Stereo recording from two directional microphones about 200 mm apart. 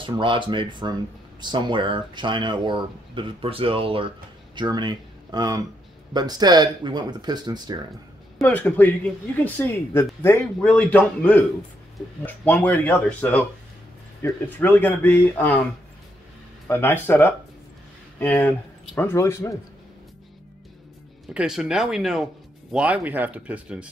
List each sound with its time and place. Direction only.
0.0 s speech: 25° right (ahead or behind)
8.4 s speech: 10° left (ahead or behind)
16.6 s speech: 10° left (ahead or behind)
21.3 s speech: 5° right (ahead or behind)